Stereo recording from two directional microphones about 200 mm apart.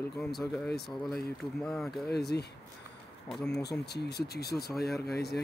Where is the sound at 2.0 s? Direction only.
55° left (ahead or behind).